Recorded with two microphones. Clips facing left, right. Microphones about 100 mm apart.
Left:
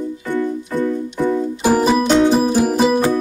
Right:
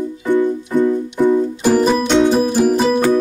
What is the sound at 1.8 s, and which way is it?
Music, centre (ahead or behind).